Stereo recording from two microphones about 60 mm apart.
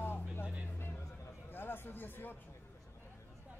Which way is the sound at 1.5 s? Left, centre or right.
Left.